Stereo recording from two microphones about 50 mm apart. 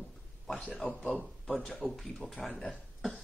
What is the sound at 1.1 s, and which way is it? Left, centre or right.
A man's voice, centre.